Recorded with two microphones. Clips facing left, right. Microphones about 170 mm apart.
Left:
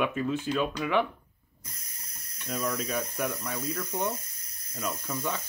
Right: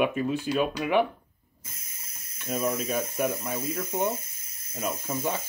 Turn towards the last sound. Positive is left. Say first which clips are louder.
# right 3 dB
turn(degrees=-25)  # may be behind; listen again after turning